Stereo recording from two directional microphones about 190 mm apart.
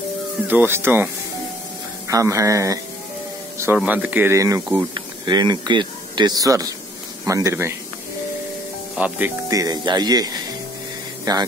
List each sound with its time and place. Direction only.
0.5 s speech: 10° right (ahead or behind)
8.9 s speech: 5° right (ahead or behind)
9.5 s speech: 20° right (ahead or behind)